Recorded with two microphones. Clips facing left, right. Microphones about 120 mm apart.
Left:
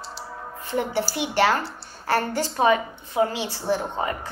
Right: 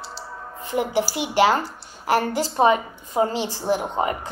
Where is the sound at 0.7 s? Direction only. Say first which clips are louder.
Right 2 dB; 10° right (ahead or behind).